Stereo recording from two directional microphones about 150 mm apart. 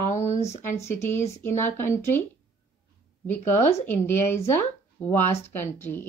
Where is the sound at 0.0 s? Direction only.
50° left (ahead or behind).